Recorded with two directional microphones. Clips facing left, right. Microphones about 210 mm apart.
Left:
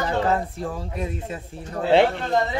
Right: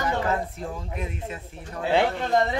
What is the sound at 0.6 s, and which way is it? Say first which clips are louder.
Speech: left 4 dB; 35° left (ahead or behind).